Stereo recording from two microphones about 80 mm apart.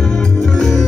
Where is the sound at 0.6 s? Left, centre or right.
Centre.